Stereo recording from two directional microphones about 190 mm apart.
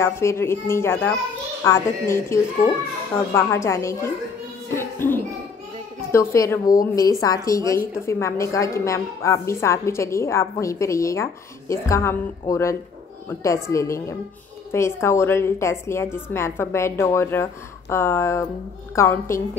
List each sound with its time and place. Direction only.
0.0 s a woman's voice: 15° left (ahead or behind)
4.7 s music: 10° left (ahead or behind)
6.1 s a woman's voice: 15° left (ahead or behind)